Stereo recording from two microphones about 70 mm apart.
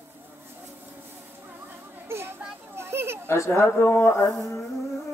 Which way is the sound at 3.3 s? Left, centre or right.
Left.